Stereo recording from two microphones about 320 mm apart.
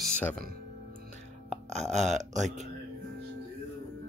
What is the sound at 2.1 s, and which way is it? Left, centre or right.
Speech, right.